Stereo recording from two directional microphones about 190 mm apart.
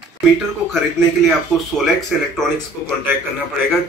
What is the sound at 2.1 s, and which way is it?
Speech, centre (ahead or behind).